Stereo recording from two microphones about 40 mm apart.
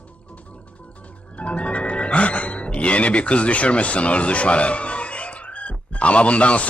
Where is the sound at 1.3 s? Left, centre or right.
Left.